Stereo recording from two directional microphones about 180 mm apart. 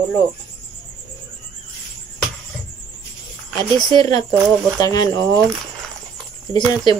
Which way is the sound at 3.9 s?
20° left (ahead or behind).